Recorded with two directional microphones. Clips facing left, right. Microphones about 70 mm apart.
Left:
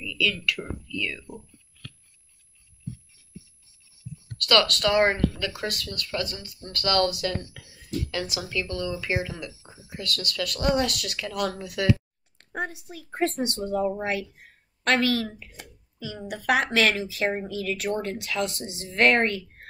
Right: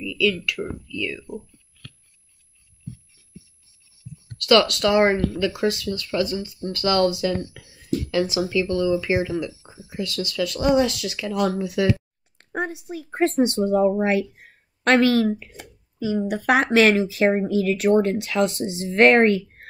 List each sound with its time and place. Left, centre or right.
0.2 s speech: right
4.4 s a woman's voice: right